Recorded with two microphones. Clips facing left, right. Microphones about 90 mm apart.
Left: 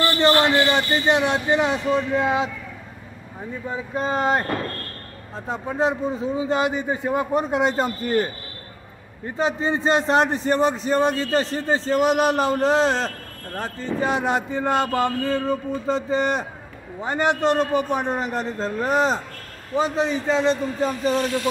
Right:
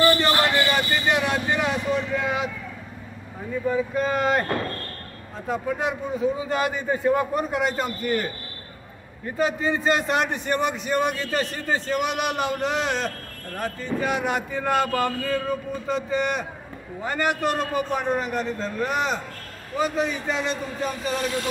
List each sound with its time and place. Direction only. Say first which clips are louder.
0.4 s a man's voice: left 3 dB; 25° left (ahead or behind)
3.6 s a man's voice: right 3 dB; 25° left (ahead or behind)
5.5 s a man's voice: left 3 dB; 30° left (ahead or behind)